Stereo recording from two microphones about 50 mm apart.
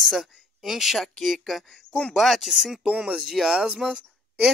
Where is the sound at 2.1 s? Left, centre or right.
Centre; by 3.3 s right.